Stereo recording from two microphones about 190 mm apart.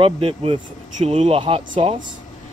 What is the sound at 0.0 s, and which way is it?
Speech, 30° right (ahead or behind).